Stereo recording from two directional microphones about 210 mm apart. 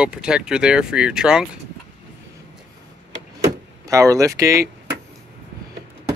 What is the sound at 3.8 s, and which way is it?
Speech, 15° right (ahead or behind).